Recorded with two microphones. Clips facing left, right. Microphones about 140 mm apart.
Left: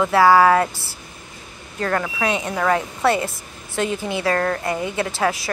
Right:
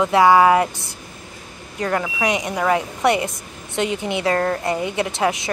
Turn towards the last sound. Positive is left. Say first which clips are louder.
# right 1 dB
turn(degrees=-20)  # may be behind; listen again after turning